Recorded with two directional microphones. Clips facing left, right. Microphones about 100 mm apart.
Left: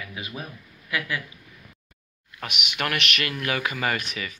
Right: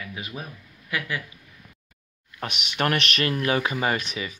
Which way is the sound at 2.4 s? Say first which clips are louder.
Right 3 dB; 35° right (ahead or behind).